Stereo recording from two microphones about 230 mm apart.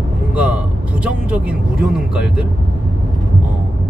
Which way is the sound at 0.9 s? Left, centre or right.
Centre.